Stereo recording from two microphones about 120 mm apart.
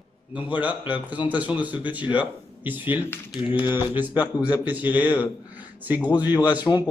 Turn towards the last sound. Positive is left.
turn(degrees=-15)  # may be behind; listen again after turning